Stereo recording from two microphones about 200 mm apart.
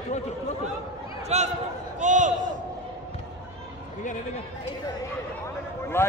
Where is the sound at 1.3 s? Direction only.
35° right (ahead or behind).